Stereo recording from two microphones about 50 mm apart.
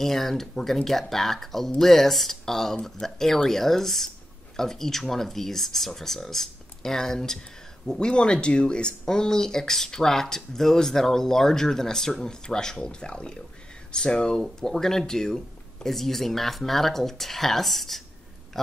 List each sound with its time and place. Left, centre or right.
0.0 s speech: centre